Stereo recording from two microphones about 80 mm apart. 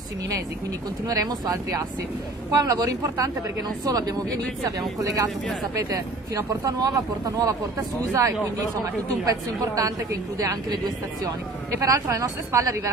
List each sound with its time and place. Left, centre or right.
1.0 s a woman's voice: right
6.3 s a woman's voice: right
11.8 s speech: right